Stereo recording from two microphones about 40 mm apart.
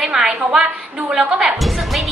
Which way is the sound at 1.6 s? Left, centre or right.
Centre.